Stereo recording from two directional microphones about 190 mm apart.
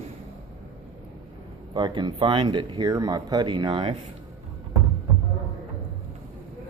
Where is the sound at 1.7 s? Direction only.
25° right (ahead or behind).